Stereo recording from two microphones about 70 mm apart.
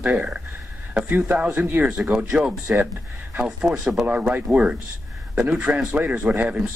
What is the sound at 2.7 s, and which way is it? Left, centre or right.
Speech, right.